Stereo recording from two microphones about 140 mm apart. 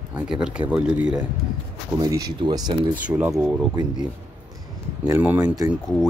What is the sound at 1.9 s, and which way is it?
Speech, 25° right (ahead or behind).